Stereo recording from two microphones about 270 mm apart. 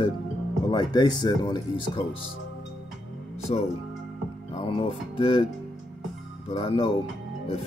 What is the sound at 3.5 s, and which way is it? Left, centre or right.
Speech, left.